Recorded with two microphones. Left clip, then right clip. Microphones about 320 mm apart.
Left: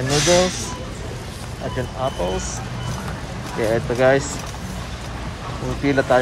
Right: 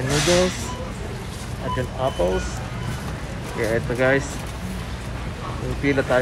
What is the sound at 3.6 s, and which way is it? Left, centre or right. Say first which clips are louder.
Speech: left 3 dB; centre.